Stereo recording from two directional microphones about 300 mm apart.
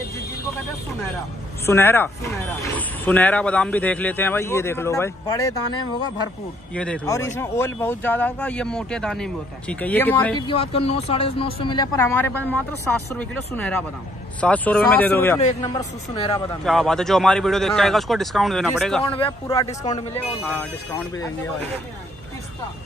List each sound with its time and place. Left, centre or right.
1.7 s speech: centre
6.7 s speech: centre
10.4 s speech: centre
16.3 s speech: centre
19.0 s speech: centre
19.8 s speech: left
20.4 s speech: centre